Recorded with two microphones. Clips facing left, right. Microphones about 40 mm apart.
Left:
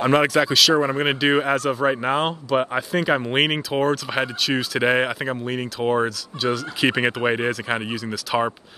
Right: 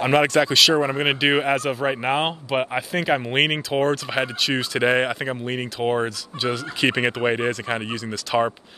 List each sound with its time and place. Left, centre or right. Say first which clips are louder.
0.1 s speech: right 2 dB; centre
2.0 s speech: left 1 dB; centre
2.9 s speech: left 1 dB; centre